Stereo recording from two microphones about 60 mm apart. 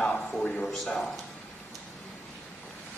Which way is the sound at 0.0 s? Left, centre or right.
Centre.